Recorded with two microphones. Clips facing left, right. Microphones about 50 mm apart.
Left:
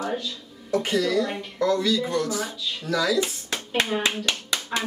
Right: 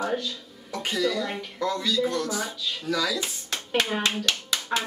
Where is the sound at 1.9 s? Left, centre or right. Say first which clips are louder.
Left 2 dB; centre.